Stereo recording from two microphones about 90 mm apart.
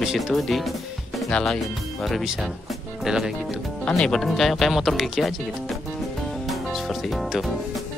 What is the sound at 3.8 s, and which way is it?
Speech, 10° left (ahead or behind).